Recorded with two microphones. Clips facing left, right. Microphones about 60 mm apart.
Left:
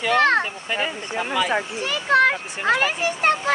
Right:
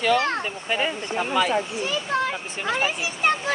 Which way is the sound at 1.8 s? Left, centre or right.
Left.